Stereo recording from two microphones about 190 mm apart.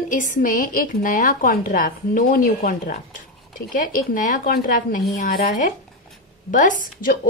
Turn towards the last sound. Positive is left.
turn(degrees=45)  # may be behind; listen again after turning